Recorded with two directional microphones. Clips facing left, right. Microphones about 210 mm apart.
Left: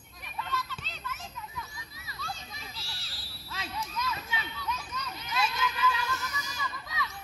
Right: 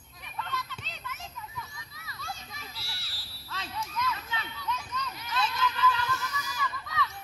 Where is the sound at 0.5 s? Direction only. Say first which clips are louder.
Left 2 dB; 20° right (ahead or behind).